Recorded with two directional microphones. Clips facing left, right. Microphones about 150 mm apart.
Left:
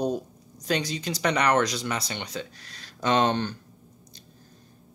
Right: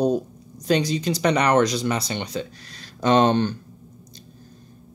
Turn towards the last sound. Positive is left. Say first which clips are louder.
# right 5 dB
turn(degrees=-35)  # may be behind; listen again after turning